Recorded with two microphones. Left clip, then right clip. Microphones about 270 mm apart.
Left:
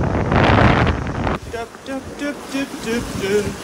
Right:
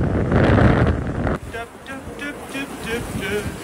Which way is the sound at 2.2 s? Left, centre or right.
Centre.